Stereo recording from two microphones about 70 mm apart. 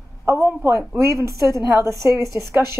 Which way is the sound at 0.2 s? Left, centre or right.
Right.